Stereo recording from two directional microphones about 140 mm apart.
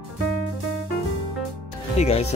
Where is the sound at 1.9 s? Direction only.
50° left (ahead or behind).